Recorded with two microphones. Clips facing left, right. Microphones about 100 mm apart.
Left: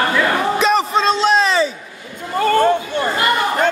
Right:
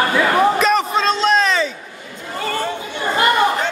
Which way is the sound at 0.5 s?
Centre (ahead or behind).